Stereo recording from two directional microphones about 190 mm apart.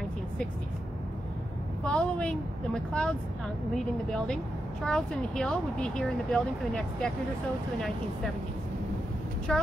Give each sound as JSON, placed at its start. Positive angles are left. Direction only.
{"t": 1.9, "sound": "speech", "side_deg": 5}
{"t": 9.5, "sound": "speech", "side_deg": 5}